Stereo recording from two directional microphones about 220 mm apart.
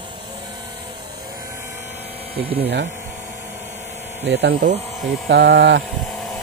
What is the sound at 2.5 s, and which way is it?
Speech, 50° right (ahead or behind).